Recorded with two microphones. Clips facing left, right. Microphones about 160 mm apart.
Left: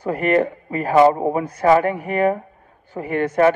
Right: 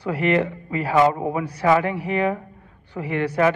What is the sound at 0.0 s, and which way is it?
A man's voice, 45° left (ahead or behind).